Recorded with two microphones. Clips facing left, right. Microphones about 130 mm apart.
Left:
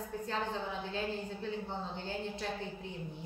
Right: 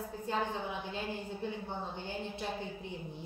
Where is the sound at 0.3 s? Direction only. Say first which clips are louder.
Right 3 dB; 15° right (ahead or behind).